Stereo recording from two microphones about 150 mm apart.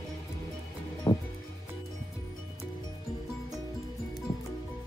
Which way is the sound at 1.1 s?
25° left (ahead or behind).